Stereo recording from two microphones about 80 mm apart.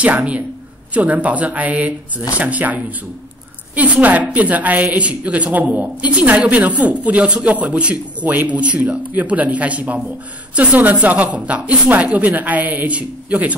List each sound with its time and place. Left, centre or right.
0.0 s a woman's voice: centre